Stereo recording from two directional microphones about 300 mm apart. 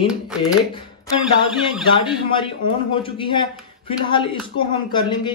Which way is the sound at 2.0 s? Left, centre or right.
Centre.